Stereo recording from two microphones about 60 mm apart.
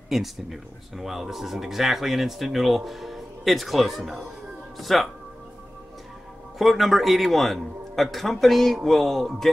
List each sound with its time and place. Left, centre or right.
0.1 s speech: centre
6.6 s speech: centre